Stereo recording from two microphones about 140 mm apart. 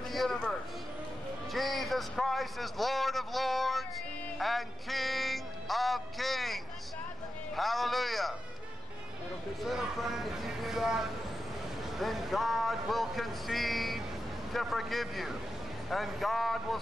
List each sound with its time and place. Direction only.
0.1 s a sound: centre (ahead or behind)
4.4 s music: centre (ahead or behind)
9.6 s a man's voice: centre (ahead or behind)
12.0 s a man's voice: centre (ahead or behind)